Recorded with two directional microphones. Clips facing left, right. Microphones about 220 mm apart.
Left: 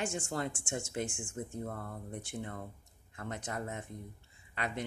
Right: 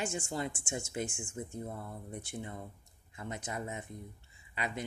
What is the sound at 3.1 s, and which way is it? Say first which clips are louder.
Speech: even; 5° right (ahead or behind).